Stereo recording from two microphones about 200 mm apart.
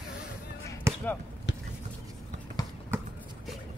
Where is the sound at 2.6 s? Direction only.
20° left (ahead or behind).